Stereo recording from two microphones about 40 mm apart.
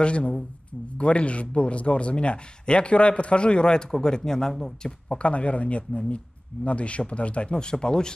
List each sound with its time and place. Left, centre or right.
0.0 s a man's voice: left; by 4.9 s centre
5.1 s speech: left
7.5 s a man's voice: centre